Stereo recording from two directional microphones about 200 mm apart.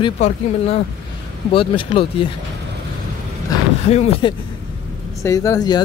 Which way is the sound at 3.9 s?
30° left (ahead or behind).